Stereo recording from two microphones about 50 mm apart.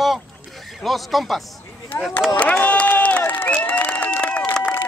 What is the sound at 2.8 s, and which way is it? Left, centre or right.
Crowd, left.